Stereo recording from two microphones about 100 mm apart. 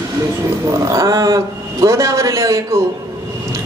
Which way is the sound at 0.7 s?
30° right (ahead or behind).